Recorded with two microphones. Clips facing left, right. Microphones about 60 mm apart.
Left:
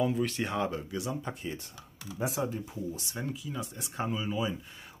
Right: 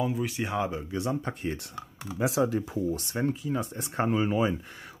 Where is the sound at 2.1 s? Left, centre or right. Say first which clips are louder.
Right 6 dB; right.